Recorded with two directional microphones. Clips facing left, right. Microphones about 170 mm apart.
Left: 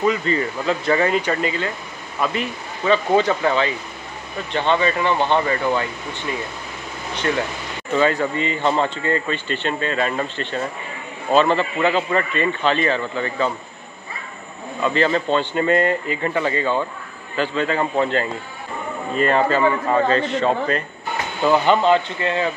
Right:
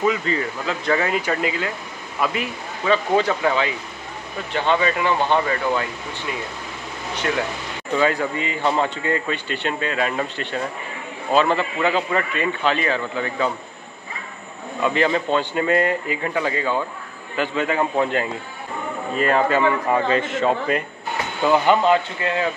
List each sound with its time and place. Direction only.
0.0 s a man's voice: 5° right (ahead or behind)
8.1 s a man's voice: 10° right (ahead or behind)
14.8 s a man's voice: 10° right (ahead or behind)